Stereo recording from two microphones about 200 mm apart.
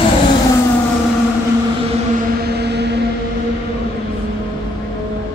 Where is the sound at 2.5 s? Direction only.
55° right (ahead or behind).